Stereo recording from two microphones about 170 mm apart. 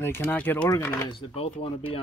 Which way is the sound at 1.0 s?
30° left (ahead or behind).